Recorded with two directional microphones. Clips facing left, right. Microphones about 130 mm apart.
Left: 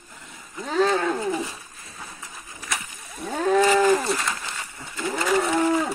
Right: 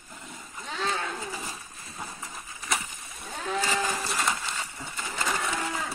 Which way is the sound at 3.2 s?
50° left (ahead or behind).